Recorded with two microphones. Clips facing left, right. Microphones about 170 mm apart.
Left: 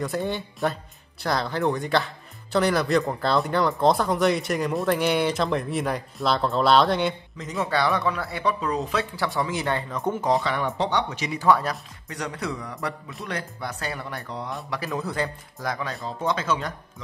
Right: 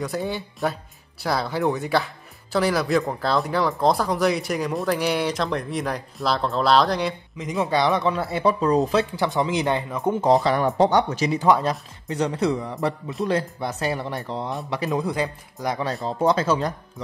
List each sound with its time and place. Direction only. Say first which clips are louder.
0.0 s speech: even; centre (ahead or behind)
7.6 s speech: right 3 dB; 20° right (ahead or behind)
8.5 s speech: right 7 dB; 40° right (ahead or behind)
9.1 s speech: right 4 dB; 20° right (ahead or behind)
10.2 s speech: right 6 dB; 35° right (ahead or behind)
11.3 s speech: right 1 dB; 20° right (ahead or behind)
15.8 s speech: right 6 dB; 35° right (ahead or behind)